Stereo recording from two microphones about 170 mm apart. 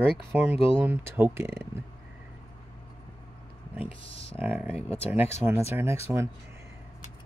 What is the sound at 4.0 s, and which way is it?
Speech, 35° left (ahead or behind).